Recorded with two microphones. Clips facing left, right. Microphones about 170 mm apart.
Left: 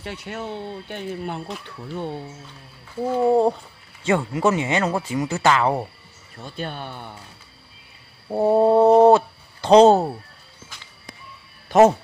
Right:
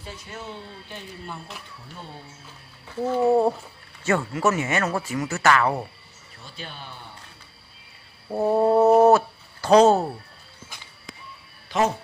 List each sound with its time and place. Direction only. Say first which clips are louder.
0.0 s speech: left 6 dB; 70° left (ahead or behind)
3.0 s speech: left 2 dB; 10° left (ahead or behind)
6.3 s speech: left 9 dB; 55° left (ahead or behind)
8.3 s speech: left 3 dB; 15° left (ahead or behind)
11.7 s speech: left 9 dB; 50° left (ahead or behind)